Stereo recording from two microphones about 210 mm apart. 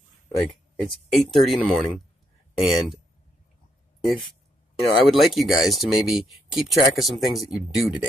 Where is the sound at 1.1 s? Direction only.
Centre (ahead or behind).